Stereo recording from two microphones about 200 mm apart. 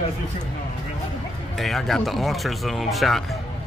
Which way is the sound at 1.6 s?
Centre (ahead or behind).